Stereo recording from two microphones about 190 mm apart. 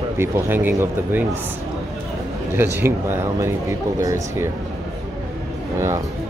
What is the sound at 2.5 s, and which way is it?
Speech, 10° right (ahead or behind).